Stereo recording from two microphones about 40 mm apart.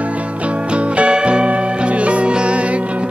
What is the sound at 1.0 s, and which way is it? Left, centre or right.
Music, right.